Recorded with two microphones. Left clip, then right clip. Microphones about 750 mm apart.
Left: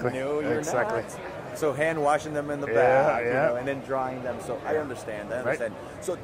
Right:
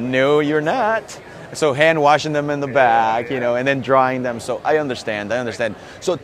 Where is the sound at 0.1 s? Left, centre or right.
Right.